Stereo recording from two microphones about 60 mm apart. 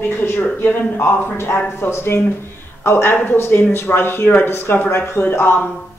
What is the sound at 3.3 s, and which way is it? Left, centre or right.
Speech, left.